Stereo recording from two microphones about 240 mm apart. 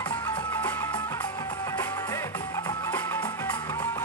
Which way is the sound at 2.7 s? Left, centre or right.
Centre.